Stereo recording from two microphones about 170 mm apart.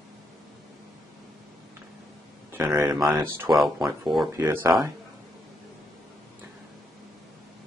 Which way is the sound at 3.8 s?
20° right (ahead or behind).